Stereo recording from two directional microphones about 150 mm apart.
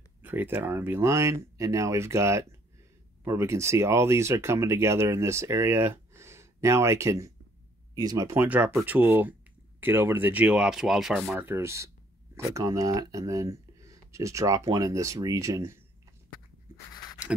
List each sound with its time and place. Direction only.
0.2 s speech: 10° right (ahead or behind)
11.3 s speech: 15° right (ahead or behind)
16.7 s writing: 15° right (ahead or behind)